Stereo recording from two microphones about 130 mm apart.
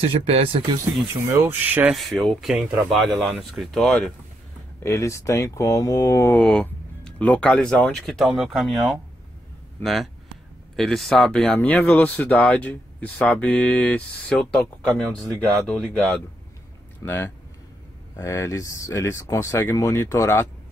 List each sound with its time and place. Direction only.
0.0 s speech: 50° right (ahead or behind)
1.3 s speech: 15° right (ahead or behind)
2.0 s speech: centre (ahead or behind)
4.8 s speech: 20° left (ahead or behind)
6.4 s speech: 5° left (ahead or behind)
10.8 s speech: 5° left (ahead or behind); by 20.4 s 20° left (ahead or behind)